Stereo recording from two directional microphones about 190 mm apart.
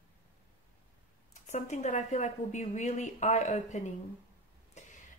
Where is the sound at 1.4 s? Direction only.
40° left (ahead or behind).